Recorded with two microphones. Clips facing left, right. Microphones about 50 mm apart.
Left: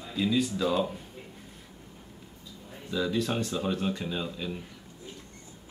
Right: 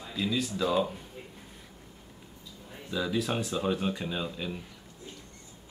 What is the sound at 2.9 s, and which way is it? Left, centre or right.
Speech, centre.